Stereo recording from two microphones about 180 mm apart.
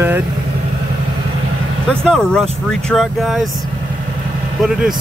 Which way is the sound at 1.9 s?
5° left (ahead or behind).